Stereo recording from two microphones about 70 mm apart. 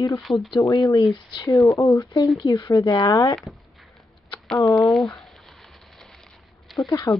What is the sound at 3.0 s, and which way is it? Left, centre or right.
Speech, left.